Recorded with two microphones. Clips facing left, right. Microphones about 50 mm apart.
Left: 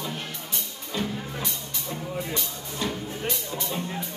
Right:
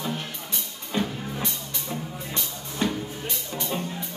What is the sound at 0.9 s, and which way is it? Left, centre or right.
Music, centre.